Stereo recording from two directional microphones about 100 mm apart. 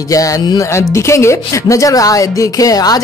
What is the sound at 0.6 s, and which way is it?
Music, 30° left (ahead or behind).